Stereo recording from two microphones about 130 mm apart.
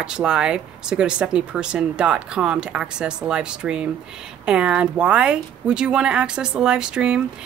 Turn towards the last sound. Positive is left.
turn(degrees=-5)  # may be behind; listen again after turning